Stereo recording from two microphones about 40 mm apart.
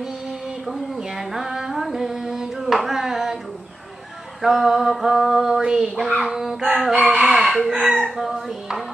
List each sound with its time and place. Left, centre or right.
0.7 s female singing: centre
4.4 s a sound: centre
5.6 s female singing: centre
6.8 s a sound: centre
7.1 s chicken: centre
7.4 s chicken: centre
7.9 s female singing: centre